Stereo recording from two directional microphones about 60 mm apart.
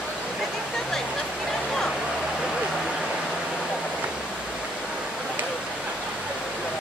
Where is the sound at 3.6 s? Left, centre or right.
Centre.